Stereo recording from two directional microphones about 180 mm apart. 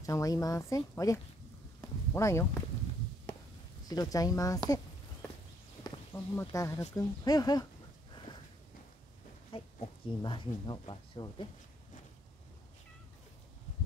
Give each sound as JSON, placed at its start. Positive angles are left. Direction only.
{"t": 0.0, "sound": "speech", "side_deg": 20}
{"t": 3.9, "sound": "speech", "side_deg": 20}
{"t": 6.1, "sound": "speech", "side_deg": 15}
{"t": 8.3, "sound": "a sound", "side_deg": 25}
{"t": 9.5, "sound": "speech", "side_deg": 30}